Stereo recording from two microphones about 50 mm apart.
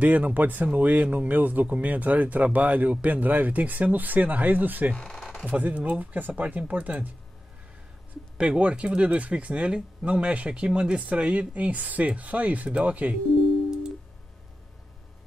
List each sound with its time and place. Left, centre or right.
0.0 s speech: right
4.9 s speech: centre
5.4 s speech: right
8.4 s speech: right